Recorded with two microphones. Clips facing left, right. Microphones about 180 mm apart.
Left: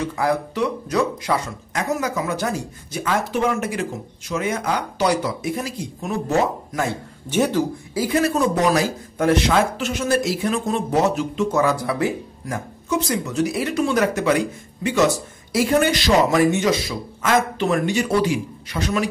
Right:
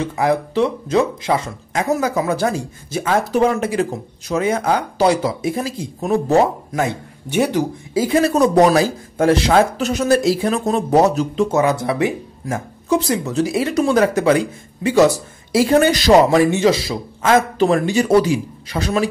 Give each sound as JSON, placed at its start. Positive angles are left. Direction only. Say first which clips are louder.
{"t": 0.0, "sound": "speech", "louder": "right 3 dB", "side_deg": -25}
{"t": 6.8, "sound": "speech", "louder": "right 4 dB", "side_deg": -15}
{"t": 7.9, "sound": "speech", "louder": "right 5 dB", "side_deg": -25}
{"t": 11.5, "sound": "speech", "louder": "right 2 dB", "side_deg": -20}